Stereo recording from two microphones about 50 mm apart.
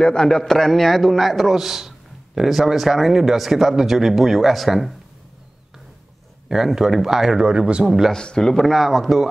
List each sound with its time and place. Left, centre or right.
0.0 s a man's voice: centre
6.5 s speech: centre
7.4 s speech: centre
7.8 s a man's voice: centre
8.1 s a man's voice: centre